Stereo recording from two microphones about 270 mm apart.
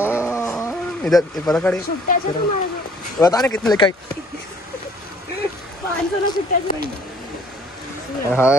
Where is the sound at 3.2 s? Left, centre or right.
Centre.